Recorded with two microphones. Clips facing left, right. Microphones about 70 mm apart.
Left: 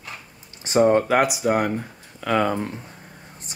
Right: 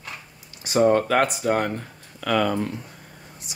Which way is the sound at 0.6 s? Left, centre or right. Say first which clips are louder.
Left 1 dB; centre.